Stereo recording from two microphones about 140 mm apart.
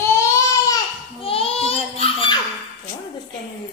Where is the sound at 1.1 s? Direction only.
40° left (ahead or behind).